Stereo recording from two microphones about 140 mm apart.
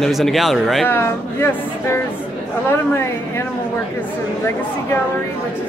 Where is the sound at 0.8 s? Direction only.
15° left (ahead or behind).